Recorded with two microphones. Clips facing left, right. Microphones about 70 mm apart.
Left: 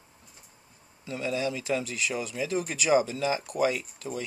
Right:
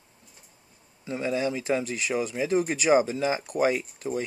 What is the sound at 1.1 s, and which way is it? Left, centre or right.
Speech, right.